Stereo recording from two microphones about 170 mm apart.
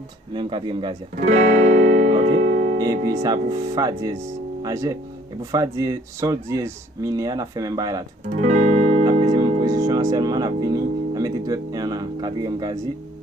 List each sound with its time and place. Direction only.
0.3 s speech: 30° right (ahead or behind)
1.2 s speech: 45° right (ahead or behind)
3.1 s speech: 20° right (ahead or behind)
8.4 s music: 45° right (ahead or behind)
9.4 s music: 25° right (ahead or behind)